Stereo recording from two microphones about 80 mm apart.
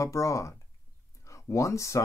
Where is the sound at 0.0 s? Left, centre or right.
Left.